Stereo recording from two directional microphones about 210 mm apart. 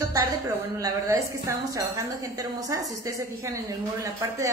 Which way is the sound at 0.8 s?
15° right (ahead or behind).